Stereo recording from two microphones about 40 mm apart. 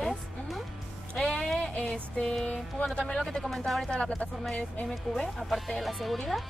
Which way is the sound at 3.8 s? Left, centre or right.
Left.